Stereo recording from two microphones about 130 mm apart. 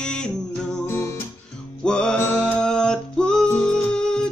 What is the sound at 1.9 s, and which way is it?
Music, 5° left (ahead or behind).